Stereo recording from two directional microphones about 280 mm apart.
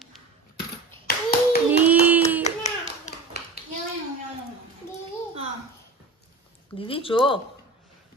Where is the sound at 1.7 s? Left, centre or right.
Centre.